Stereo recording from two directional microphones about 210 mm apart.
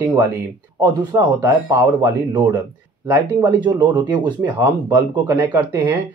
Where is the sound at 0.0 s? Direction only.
15° right (ahead or behind).